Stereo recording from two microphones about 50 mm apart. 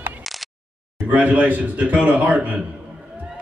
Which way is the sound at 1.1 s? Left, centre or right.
Right.